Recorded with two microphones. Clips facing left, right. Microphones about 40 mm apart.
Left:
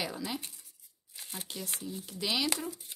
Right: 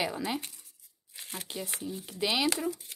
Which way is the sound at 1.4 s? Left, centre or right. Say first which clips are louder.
Right 3 dB; centre.